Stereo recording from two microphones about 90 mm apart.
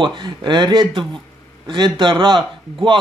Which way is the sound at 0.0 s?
60° right (ahead or behind).